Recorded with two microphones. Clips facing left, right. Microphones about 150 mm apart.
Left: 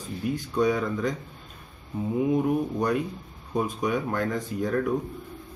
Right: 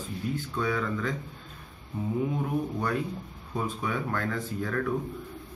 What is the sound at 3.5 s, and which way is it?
Speech, 15° left (ahead or behind).